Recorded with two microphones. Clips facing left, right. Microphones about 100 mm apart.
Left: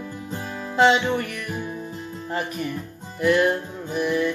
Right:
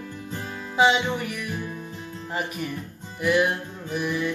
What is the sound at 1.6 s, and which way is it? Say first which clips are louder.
Music: left 3 dB; 20° left (ahead or behind).